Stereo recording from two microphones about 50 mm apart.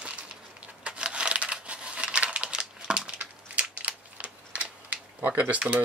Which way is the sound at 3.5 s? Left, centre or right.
Right.